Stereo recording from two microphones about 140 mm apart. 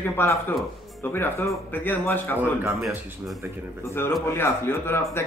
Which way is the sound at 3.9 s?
15° left (ahead or behind).